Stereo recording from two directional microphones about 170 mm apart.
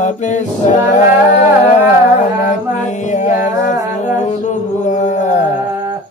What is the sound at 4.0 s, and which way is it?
Music, 45° left (ahead or behind).